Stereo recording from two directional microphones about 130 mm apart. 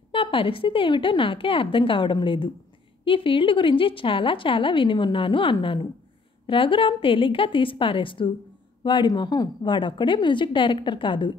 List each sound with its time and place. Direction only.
0.1 s a woman's voice: 40° left (ahead or behind)